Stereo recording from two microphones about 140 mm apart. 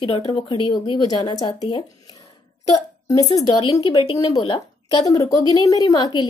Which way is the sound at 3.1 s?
25° left (ahead or behind).